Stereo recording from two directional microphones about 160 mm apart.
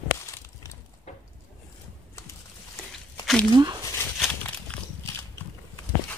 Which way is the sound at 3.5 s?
25° right (ahead or behind).